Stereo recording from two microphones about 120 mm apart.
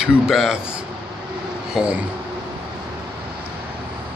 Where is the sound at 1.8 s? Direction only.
5° right (ahead or behind).